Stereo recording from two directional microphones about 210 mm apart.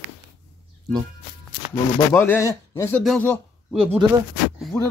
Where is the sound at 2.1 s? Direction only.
10° left (ahead or behind).